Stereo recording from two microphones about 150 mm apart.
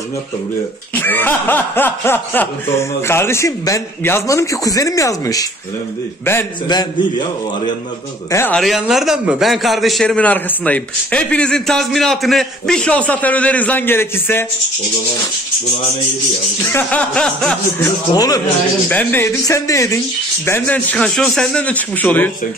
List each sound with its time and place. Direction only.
0.9 s speech: 15° left (ahead or behind)
6.7 s a man's voice: 30° left (ahead or behind)
8.3 s speech: 15° left (ahead or behind)
8.5 s a man's voice: centre (ahead or behind); by 14.4 s 15° left (ahead or behind)
16.6 s speech: 10° left (ahead or behind)
17.8 s a man's voice: 25° left (ahead or behind)
18.9 s speech: 10° left (ahead or behind)
19.4 s a man's voice: 20° left (ahead or behind)